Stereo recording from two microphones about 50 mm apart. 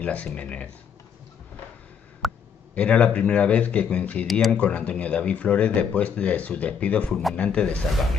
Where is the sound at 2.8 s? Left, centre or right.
Left.